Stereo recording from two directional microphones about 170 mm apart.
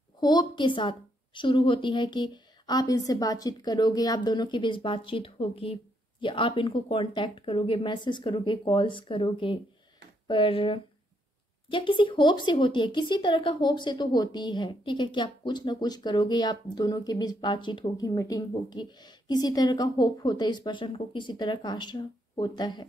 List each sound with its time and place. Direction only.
0.2 s speech: 25° left (ahead or behind)